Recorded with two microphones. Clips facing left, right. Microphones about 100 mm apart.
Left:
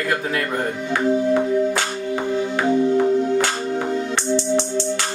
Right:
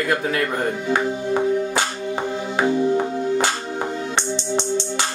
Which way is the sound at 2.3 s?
15° right (ahead or behind).